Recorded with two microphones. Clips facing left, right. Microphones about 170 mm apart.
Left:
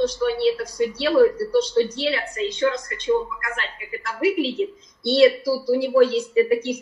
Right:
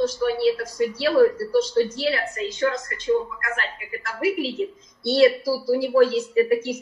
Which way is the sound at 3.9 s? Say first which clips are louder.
Left 3 dB; 25° left (ahead or behind).